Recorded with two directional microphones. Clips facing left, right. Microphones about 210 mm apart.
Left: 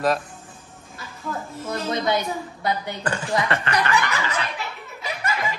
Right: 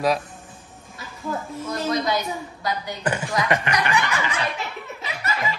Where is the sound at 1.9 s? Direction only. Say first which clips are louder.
Left 1 dB; 25° left (ahead or behind).